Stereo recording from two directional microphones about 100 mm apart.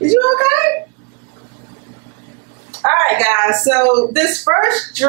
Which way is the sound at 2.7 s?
15° right (ahead or behind).